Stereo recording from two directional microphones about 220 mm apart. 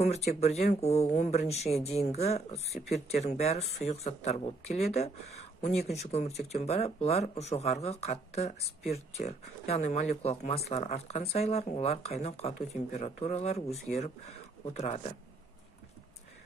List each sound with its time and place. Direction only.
0.0 s speech: 30° left (ahead or behind)